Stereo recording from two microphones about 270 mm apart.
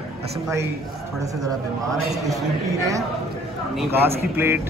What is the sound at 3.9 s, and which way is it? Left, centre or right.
Speech, centre.